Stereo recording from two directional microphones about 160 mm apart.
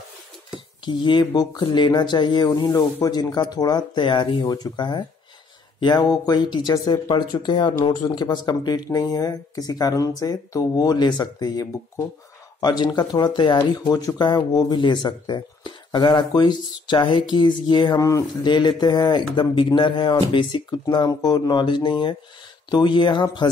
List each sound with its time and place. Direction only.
0.8 s speech: 30° left (ahead or behind)